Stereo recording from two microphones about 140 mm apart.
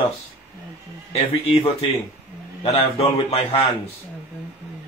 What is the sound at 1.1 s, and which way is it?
Speech, 45° left (ahead or behind).